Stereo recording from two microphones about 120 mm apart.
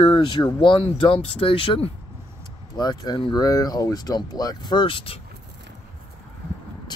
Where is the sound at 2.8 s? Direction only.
35° left (ahead or behind).